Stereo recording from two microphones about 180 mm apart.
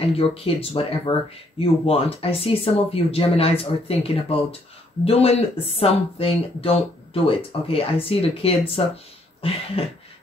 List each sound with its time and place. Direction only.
0.0 s speech: 30° left (ahead or behind)